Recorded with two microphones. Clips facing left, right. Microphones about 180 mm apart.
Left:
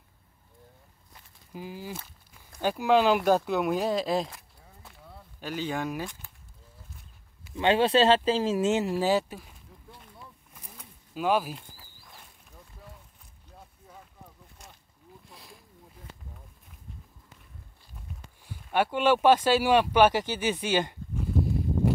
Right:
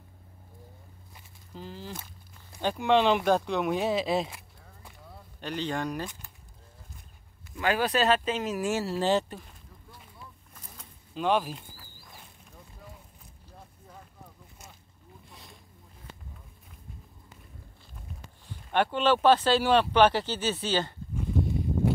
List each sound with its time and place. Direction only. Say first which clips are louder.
1.5 s speech: left 2 dB; 10° left (ahead or behind); by 4.9 s 5° right (ahead or behind)
5.4 s speech: even; 5° left (ahead or behind)
7.5 s speech: left 4 dB; 25° left (ahead or behind)
9.0 s speech: left 1 dB; 5° left (ahead or behind)
10.5 s a sound: left 1 dB; 10° left (ahead or behind)
13.5 s vehicle: even; centre (ahead or behind)
15.2 s boat: even; centre (ahead or behind)
18.5 s speech: even; 10° left (ahead or behind)
21.2 s a sound: left 1 dB; centre (ahead or behind)